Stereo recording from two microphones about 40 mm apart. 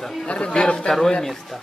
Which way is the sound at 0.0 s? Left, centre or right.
Centre.